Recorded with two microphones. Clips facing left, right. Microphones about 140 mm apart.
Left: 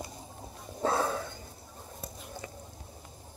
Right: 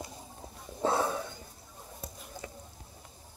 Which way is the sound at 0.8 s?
20° right (ahead or behind).